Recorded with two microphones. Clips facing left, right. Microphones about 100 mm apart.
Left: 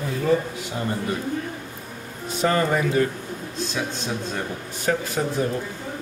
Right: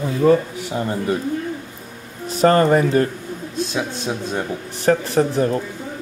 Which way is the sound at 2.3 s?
45° right (ahead or behind).